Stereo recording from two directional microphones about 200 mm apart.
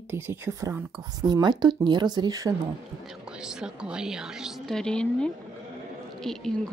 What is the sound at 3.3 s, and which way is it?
A woman's voice, 5° right (ahead or behind).